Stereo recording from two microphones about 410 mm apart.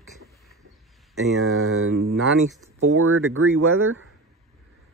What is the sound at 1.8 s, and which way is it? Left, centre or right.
Speech, right.